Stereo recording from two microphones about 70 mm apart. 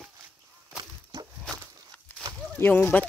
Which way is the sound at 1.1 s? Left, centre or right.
Right.